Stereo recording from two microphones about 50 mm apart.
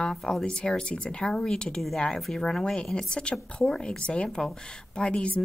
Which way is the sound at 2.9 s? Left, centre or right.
Centre.